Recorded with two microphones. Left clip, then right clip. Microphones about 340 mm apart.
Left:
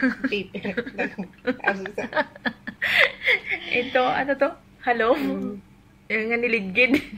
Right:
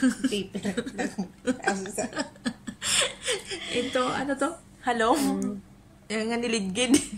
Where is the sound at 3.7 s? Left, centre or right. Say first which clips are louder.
Left 4 dB; left.